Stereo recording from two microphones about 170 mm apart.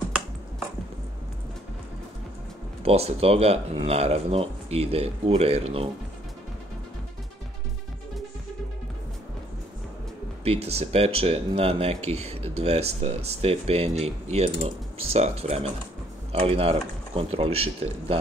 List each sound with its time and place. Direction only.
2.8 s speech: 35° right (ahead or behind)
10.4 s speech: 35° right (ahead or behind)